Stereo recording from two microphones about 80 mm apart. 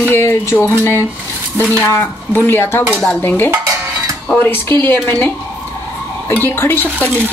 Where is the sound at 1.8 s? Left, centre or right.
Left.